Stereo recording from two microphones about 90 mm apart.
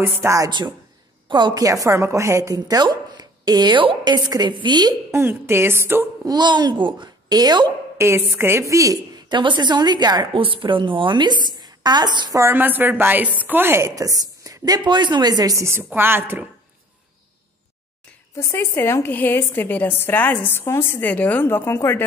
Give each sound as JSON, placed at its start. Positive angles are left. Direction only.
{"t": 0.0, "sound": "a woman's voice", "side_deg": -25}
{"t": 0.5, "sound": "a woman's voice", "side_deg": -60}
{"t": 1.6, "sound": "a woman's voice", "side_deg": -40}
{"t": 4.1, "sound": "a woman's voice", "side_deg": -50}
{"t": 5.1, "sound": "a woman's voice", "side_deg": -25}
{"t": 6.2, "sound": "a woman's voice", "side_deg": -55}
{"t": 8.0, "sound": "a woman's voice", "side_deg": -30}
{"t": 9.3, "sound": "a woman's voice", "side_deg": -60}
{"t": 10.3, "sound": "a woman's voice", "side_deg": -70}
{"t": 12.4, "sound": "a woman's voice", "side_deg": -25}
{"t": 15.6, "sound": "a woman's voice", "side_deg": -30}
{"t": 18.3, "sound": "a woman's voice", "side_deg": 30}